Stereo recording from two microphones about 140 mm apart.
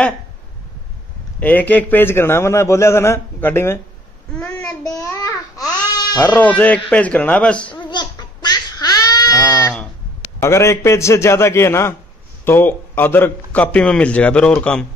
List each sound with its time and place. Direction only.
1.4 s a man's voice: 10° left (ahead or behind)
4.3 s child singing: 10° left (ahead or behind)
5.6 s baby cry: 30° left (ahead or behind)
6.1 s a man's voice: 10° left (ahead or behind)
7.9 s goat: 30° left (ahead or behind)
10.4 s a man's voice: 20° left (ahead or behind)